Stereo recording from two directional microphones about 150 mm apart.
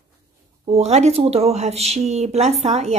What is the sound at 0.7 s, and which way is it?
A woman's voice, 45° right (ahead or behind).